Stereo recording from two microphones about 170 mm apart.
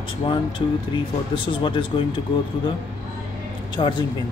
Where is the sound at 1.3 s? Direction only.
30° left (ahead or behind).